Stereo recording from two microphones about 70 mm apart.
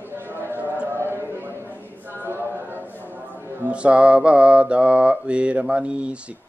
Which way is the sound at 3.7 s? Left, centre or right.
Centre.